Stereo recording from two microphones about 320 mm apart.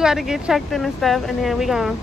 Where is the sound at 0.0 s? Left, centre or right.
Centre.